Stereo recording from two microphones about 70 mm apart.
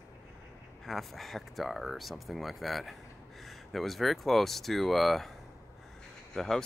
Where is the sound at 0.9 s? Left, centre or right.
Centre.